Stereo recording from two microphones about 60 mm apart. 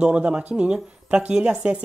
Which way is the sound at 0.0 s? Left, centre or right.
Centre.